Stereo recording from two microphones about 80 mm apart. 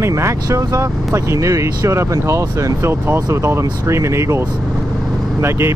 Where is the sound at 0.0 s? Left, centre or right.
Right.